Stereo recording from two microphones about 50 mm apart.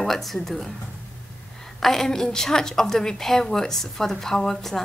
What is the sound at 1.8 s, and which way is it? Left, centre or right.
A woman's voice, centre.